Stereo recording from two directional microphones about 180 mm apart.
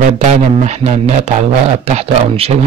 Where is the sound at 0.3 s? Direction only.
40° right (ahead or behind).